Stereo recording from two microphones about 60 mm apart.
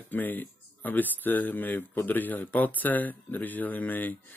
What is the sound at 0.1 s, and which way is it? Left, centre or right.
Speech, left.